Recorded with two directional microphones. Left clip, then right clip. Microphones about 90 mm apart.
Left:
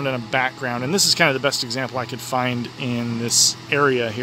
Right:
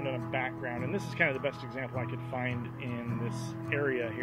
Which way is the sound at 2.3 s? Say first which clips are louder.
Left 15 dB; 35° left (ahead or behind).